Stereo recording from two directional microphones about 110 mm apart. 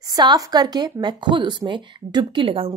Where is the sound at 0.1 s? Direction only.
40° right (ahead or behind).